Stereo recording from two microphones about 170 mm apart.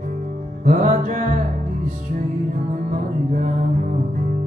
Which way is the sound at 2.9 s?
50° right (ahead or behind).